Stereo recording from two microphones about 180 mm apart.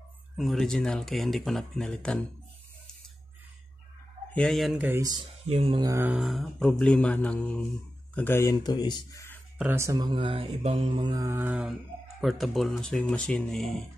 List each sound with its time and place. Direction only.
0.4 s speech: centre (ahead or behind)
4.3 s speech: 5° left (ahead or behind)
4.9 s mantra: 20° right (ahead or behind)
5.5 s speech: 30° right (ahead or behind)
5.9 s speech: 15° right (ahead or behind)
6.1 s speech: centre (ahead or behind); by 9.4 s 15° left (ahead or behind)
9.6 s speech: 15° right (ahead or behind)
10.0 s mantra: 30° right (ahead or behind); by 11.7 s 5° right (ahead or behind)
12.2 s speech: centre (ahead or behind)